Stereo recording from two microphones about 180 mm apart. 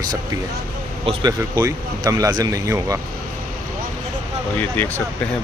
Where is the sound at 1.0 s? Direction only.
20° right (ahead or behind).